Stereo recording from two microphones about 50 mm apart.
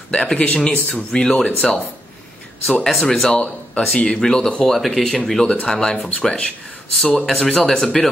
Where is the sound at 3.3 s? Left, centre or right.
Left.